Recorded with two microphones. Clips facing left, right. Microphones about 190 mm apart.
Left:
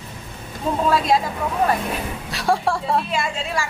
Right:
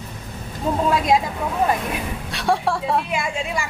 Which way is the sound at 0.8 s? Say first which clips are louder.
Even; 20° right (ahead or behind).